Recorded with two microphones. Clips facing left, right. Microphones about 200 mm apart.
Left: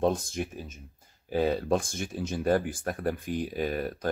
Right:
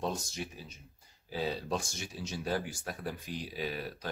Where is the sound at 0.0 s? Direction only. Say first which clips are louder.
Left 9 dB; 55° left (ahead or behind).